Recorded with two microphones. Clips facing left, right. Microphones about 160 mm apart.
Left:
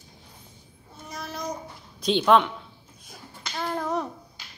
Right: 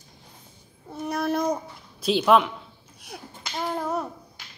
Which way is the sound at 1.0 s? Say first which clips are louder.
Right 10 dB; 60° right (ahead or behind).